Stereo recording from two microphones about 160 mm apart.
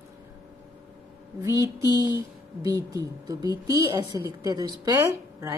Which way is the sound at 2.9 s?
20° right (ahead or behind).